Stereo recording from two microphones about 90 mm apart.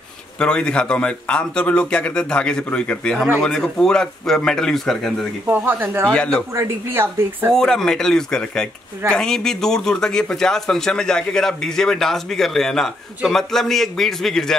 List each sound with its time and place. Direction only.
0.4 s speech: 10° left (ahead or behind)
5.5 s speech: 25° right (ahead or behind)
6.0 s speech: 10° left (ahead or behind)
6.5 s speech: 30° right (ahead or behind)
7.5 s speech: 5° left (ahead or behind)